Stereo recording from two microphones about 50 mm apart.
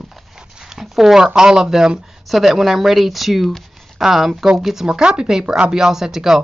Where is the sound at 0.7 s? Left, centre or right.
Centre.